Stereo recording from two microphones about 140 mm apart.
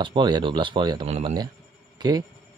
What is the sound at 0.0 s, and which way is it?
Speech, 35° right (ahead or behind).